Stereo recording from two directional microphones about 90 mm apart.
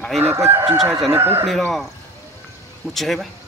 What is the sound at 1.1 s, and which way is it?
Chicken, 25° right (ahead or behind).